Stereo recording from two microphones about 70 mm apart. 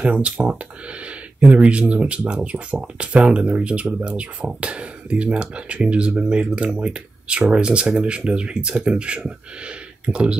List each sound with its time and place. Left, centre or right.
0.0 s speech: centre